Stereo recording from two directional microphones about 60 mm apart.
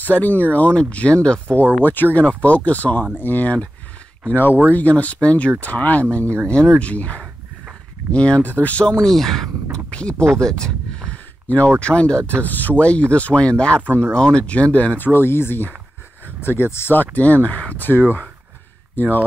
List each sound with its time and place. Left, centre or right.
0.0 s speech: left
1.8 s speech: left
4.7 s speech: left
9.0 s speech: centre
9.8 s speech: centre
11.4 s speech: left
12.2 s speech: right
12.4 s speech: left
13.8 s speech: right
14.1 s speech: centre
15.0 s speech: left